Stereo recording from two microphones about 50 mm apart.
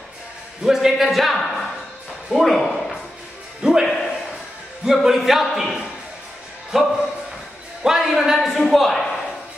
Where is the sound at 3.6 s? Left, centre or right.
Centre.